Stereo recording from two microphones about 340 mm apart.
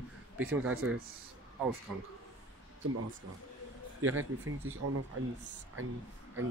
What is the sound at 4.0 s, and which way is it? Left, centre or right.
Speech, right.